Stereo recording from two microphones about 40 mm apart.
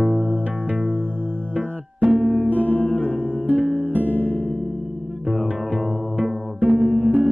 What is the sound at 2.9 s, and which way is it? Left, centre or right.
Music, left.